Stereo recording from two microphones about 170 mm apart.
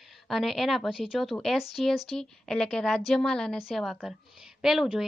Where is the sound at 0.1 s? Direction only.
Centre (ahead or behind).